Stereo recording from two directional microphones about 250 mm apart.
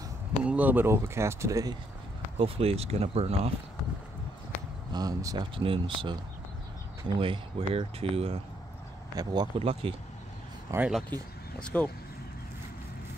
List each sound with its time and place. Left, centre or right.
0.4 s speech: centre; by 3.5 s right
4.9 s speech: centre
10.7 s speech: centre